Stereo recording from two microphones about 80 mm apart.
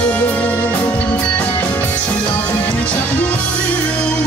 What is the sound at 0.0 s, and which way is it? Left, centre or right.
Music, centre.